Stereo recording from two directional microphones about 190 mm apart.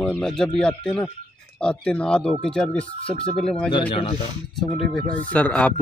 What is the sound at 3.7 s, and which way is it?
Speech, 25° left (ahead or behind).